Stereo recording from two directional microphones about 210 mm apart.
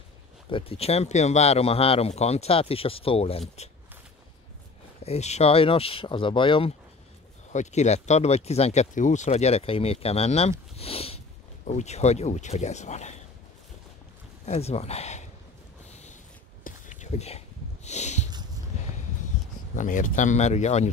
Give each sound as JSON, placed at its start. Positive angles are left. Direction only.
{"t": 0.5, "sound": "speech", "side_deg": 25}
{"t": 5.0, "sound": "speech", "side_deg": 30}
{"t": 7.5, "sound": "speech", "side_deg": 35}
{"t": 10.8, "sound": "sniff", "side_deg": 30}
{"t": 11.6, "sound": "speech", "side_deg": 30}
{"t": 14.4, "sound": "speech", "side_deg": 30}
{"t": 15.9, "sound": "a sound", "side_deg": 30}
{"t": 19.7, "sound": "speech", "side_deg": 40}